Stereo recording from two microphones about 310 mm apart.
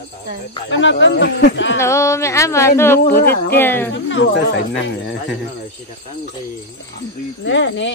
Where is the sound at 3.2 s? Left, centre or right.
Left.